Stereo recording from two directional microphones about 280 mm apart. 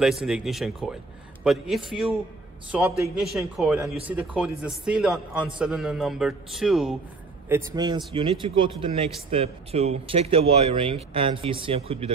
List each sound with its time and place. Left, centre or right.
0.0 s a man's voice: centre; by 12.1 s right